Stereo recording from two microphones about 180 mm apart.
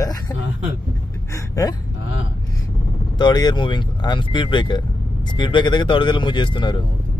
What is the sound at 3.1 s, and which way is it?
Speech, 25° left (ahead or behind).